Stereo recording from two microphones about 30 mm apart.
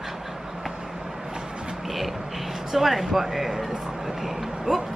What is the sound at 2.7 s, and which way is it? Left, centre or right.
Speech, centre.